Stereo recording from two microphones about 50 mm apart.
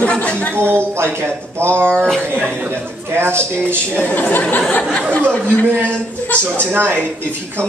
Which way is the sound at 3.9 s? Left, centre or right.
Left.